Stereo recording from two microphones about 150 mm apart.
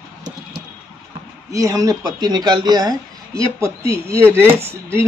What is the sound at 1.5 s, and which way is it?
Speech, 20° right (ahead or behind).